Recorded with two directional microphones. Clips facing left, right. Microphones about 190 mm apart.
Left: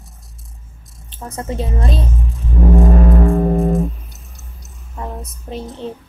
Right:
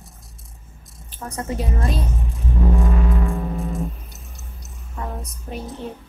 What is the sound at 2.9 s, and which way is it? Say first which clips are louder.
Music: left 8 dB; 45° left (ahead or behind).